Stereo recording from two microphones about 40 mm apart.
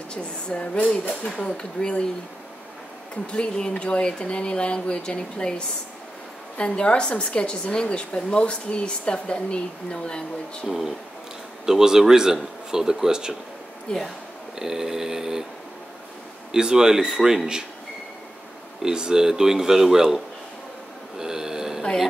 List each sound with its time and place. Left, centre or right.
0.1 s a woman's voice: left
3.3 s a woman's voice: left
6.6 s a woman's voice: left
11.6 s speech: centre
13.9 s a woman's voice: left
14.6 s speech: centre
16.5 s speech: centre
18.8 s speech: centre
21.2 s a sound: centre